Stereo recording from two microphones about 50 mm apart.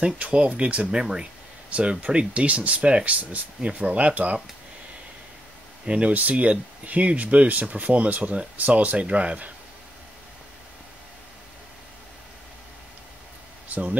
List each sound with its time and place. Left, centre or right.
0.0 s speech: right
0.9 s speech: centre
1.7 s speech: right
5.9 s speech: right
13.7 s speech: right